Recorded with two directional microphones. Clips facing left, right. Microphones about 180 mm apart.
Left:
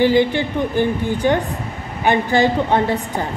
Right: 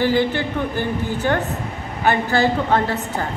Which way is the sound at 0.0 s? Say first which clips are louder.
Left 4 dB; 15° left (ahead or behind).